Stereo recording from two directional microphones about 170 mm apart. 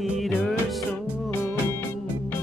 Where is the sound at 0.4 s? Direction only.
Centre (ahead or behind).